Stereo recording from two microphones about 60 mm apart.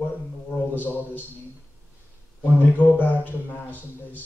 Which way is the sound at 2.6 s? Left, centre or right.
Left.